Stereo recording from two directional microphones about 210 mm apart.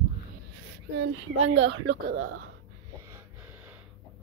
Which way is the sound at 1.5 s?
65° right (ahead or behind).